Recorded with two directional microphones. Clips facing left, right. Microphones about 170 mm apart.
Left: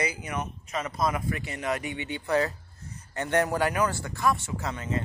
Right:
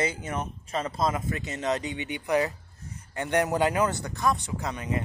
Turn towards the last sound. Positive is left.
turn(degrees=-15)  # may be behind; listen again after turning